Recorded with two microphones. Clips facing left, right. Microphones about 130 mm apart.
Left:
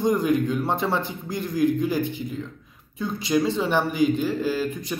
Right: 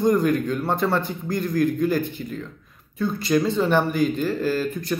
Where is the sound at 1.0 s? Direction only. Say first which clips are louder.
Right 3 dB; 50° right (ahead or behind).